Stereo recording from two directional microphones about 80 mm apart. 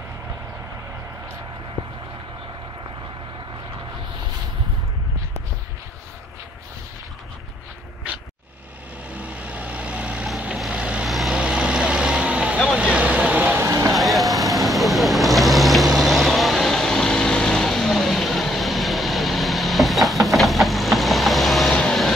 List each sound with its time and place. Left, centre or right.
9.1 s vehicle: centre
11.1 s vehicle: centre
11.3 s vehicle: centre
13.7 s vehicle: right
13.9 s vehicle: centre